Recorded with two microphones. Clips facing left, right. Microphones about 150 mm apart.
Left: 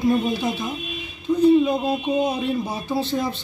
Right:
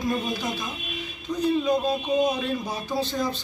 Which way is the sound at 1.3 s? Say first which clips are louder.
Left 8 dB; 5° left (ahead or behind).